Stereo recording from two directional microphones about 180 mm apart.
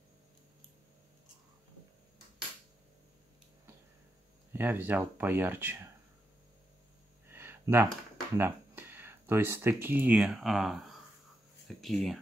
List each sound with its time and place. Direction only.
4.5 s speech: 10° right (ahead or behind)
7.2 s a sound: 15° right (ahead or behind)
8.4 s speech: 10° right (ahead or behind)